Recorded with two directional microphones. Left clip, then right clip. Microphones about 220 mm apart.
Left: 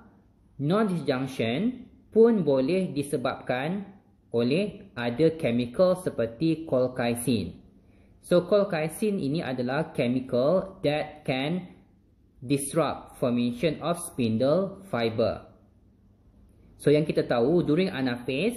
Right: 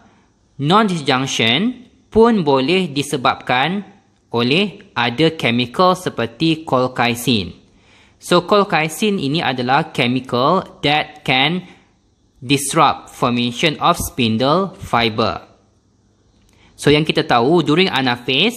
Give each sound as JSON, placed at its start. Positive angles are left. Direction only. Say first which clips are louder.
{"t": 0.6, "sound": "speech", "louder": "right 12 dB", "side_deg": -45}
{"t": 16.8, "sound": "speech", "louder": "right 8 dB", "side_deg": -45}